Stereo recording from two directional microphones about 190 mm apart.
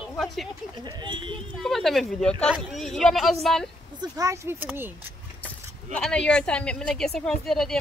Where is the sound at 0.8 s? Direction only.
25° right (ahead or behind).